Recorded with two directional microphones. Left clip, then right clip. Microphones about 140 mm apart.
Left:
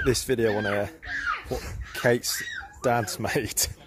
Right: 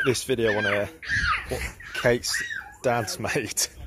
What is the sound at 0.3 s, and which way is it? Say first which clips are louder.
Speech: right 1 dB; 25° left (ahead or behind).